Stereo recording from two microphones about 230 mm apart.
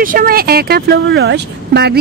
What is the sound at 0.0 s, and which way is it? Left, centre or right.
Speech, right.